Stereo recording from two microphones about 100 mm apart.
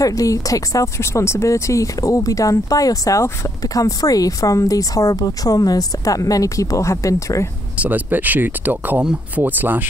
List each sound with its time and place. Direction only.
0.0 s speech: 35° left (ahead or behind)
7.7 s speech: 15° right (ahead or behind)